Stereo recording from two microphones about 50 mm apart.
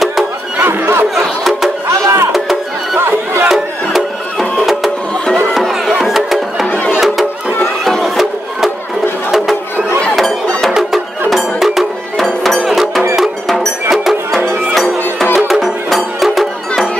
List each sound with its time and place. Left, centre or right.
0.6 s chatter: right
1.1 s music: centre
1.9 s music: right
2.3 s music: centre
3.0 s crowd: right
3.4 s music: centre
6.7 s music: left
7.8 s music: centre
10.7 s music: centre
12.4 s cowbell: centre
13.8 s music: centre